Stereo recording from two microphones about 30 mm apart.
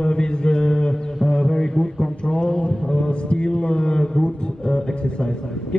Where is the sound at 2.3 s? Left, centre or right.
Left.